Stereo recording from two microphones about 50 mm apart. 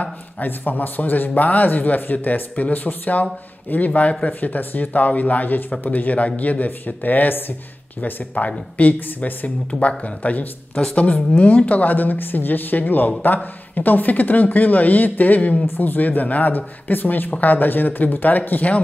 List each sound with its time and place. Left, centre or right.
0.0 s speech: left
4.3 s speech: left
8.0 s speech: left